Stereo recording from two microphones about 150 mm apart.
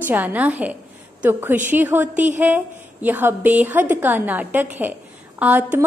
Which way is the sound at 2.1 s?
55° right (ahead or behind).